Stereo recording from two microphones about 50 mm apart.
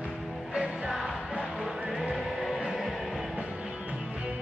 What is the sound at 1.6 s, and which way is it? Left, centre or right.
Music, centre.